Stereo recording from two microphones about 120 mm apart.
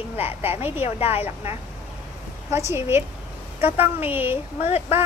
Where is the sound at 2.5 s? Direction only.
25° right (ahead or behind).